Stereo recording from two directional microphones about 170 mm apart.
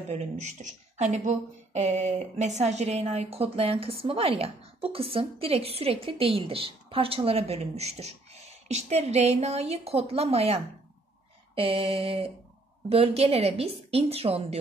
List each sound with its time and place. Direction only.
0.1 s a woman's voice: 40° right (ahead or behind)